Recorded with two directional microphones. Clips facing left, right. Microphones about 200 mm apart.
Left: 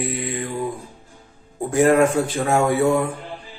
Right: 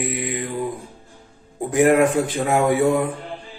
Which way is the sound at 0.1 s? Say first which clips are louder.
Even; 15° right (ahead or behind).